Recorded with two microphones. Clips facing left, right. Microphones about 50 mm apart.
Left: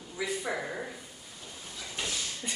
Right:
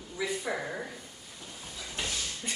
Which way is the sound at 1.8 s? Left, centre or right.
Centre.